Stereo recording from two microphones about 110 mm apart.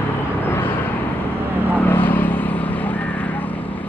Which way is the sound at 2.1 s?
15° left (ahead or behind).